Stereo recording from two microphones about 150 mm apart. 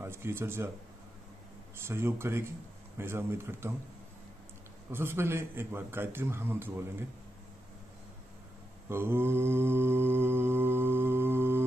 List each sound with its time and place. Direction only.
0.0 s a man's voice: 15° right (ahead or behind)
1.9 s a man's voice: 15° right (ahead or behind)
4.9 s a man's voice: 15° right (ahead or behind)
8.8 s mantra: 15° right (ahead or behind)